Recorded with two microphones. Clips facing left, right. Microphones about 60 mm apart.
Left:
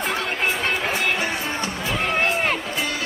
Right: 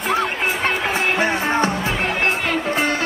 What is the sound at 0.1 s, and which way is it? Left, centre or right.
Music, right.